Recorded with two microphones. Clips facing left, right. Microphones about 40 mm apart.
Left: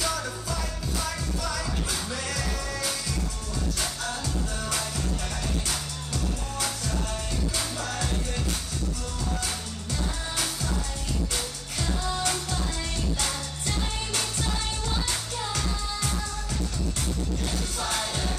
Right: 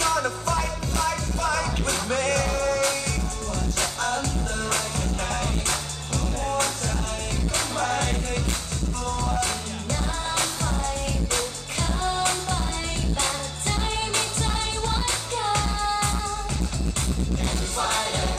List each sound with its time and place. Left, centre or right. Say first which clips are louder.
0.0 s music: right 7 dB; right
10.3 s music: right 6 dB; right
12.2 s music: right 4 dB; right
17.7 s music: right 7 dB; right